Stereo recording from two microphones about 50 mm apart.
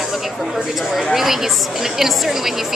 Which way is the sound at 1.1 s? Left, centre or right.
Centre.